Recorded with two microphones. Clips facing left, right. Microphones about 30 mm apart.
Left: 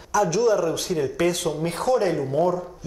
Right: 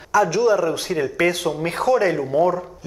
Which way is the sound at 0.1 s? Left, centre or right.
Centre.